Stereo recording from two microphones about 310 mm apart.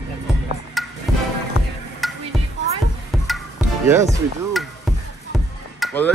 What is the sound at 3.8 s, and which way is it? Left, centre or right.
Speech, centre.